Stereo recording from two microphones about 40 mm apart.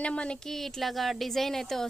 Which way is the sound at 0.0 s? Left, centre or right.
Left.